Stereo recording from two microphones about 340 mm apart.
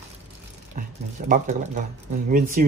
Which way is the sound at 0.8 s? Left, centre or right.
Right.